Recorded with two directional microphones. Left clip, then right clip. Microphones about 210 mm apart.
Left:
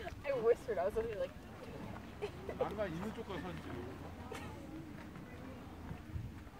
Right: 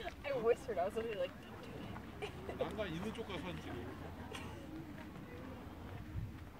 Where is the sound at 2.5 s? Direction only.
20° left (ahead or behind).